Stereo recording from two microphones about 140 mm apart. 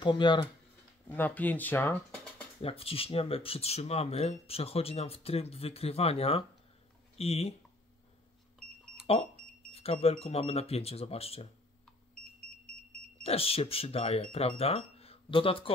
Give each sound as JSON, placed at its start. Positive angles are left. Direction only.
{"t": 0.0, "sound": "speech", "side_deg": 35}
{"t": 1.0, "sound": "speech", "side_deg": 15}
{"t": 2.6, "sound": "speech", "side_deg": 45}
{"t": 9.0, "sound": "speech", "side_deg": 45}
{"t": 13.2, "sound": "speech", "side_deg": 45}